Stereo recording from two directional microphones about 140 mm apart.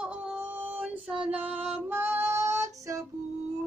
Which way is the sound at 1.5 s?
45° right (ahead or behind).